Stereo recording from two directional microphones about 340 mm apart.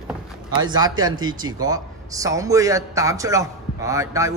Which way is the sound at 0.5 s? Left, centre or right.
Centre.